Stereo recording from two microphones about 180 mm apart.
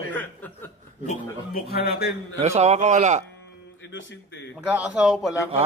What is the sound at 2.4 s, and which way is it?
Speech, 35° right (ahead or behind).